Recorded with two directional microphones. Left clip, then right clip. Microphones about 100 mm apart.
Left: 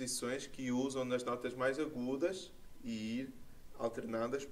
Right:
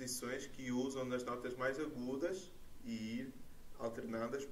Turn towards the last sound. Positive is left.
turn(degrees=15)  # may be behind; listen again after turning